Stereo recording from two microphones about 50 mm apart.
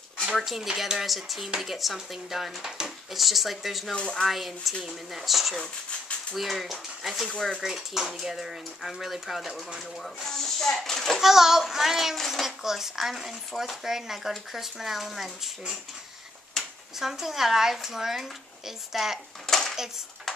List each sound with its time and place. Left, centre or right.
0.4 s speech: centre
3.9 s speech: left
4.3 s speech: centre
10.0 s speech: centre
11.1 s speech: centre
16.6 s a sound: centre
17.0 s speech: centre
19.4 s dishes: centre